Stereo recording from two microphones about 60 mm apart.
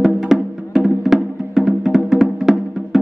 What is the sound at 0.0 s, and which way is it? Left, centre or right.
Music, centre.